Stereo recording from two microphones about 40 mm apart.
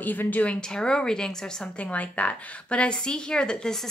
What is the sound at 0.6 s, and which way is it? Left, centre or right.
A woman's voice, centre.